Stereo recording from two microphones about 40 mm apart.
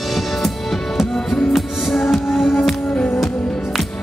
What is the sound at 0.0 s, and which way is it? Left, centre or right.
Music, centre.